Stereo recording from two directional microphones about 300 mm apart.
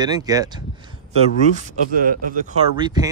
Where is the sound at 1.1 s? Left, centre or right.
Right.